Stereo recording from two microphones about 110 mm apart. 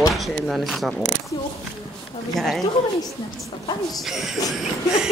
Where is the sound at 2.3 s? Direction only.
5° left (ahead or behind).